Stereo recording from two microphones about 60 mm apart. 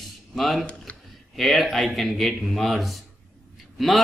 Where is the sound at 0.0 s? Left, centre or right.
Centre.